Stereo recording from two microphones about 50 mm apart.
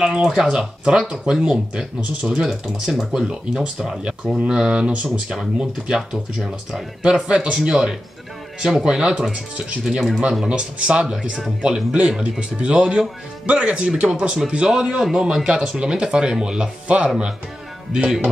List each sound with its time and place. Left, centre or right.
0.0 s speech: centre
5.0 s speech: centre
10.5 s speech: right
13.5 s speech: right